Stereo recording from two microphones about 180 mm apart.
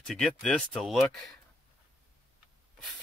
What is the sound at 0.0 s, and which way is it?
Speech, centre (ahead or behind).